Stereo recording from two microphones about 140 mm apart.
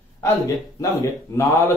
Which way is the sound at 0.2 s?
25° left (ahead or behind).